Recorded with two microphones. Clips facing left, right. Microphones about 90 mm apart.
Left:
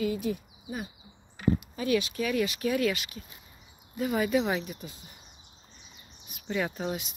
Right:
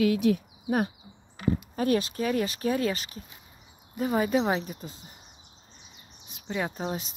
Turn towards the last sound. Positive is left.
turn(degrees=-35)  # may be behind; listen again after turning